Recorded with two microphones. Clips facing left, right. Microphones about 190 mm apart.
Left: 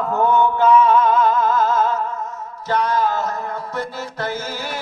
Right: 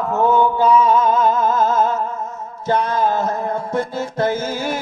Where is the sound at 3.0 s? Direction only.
50° right (ahead or behind).